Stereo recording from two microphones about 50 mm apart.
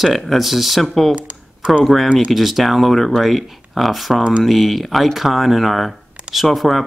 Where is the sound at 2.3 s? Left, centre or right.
Centre.